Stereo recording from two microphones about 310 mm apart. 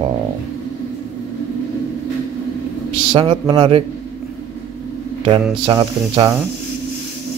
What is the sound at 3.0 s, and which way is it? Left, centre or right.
Speech, centre.